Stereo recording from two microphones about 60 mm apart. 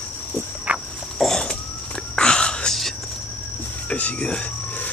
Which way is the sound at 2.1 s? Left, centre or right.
Centre.